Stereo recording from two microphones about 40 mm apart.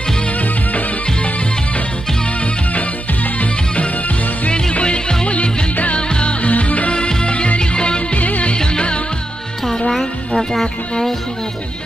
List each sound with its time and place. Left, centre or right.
0.4 s music: left
3.3 s music: left
4.5 s music: left
6.9 s music: left
8.2 s music: left
8.5 s music: left
10.5 s speech: centre